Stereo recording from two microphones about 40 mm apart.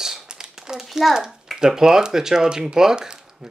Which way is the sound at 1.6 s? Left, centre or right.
Centre.